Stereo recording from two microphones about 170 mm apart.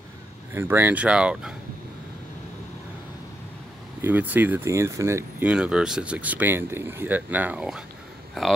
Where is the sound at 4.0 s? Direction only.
10° right (ahead or behind).